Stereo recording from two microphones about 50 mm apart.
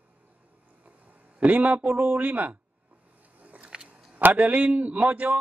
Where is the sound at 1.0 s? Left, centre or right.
Right.